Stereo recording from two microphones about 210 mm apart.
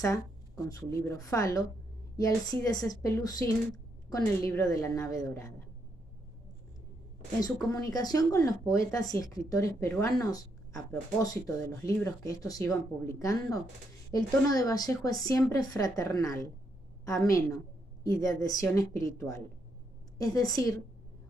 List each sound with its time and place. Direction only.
0.0 s speech: 15° left (ahead or behind)
7.3 s speech: 20° left (ahead or behind)